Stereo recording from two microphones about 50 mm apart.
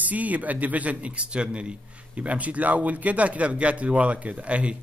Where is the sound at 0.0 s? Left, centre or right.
Right.